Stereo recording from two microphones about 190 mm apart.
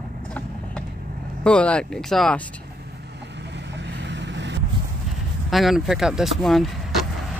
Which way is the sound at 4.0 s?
65° right (ahead or behind).